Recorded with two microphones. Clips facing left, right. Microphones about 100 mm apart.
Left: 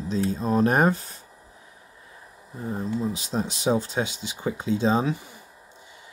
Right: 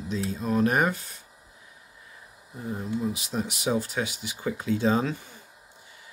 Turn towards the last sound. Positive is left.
turn(degrees=15)  # may be behind; listen again after turning